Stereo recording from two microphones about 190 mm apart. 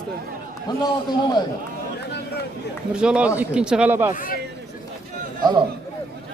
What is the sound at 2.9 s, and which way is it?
A man's voice, 5° right (ahead or behind).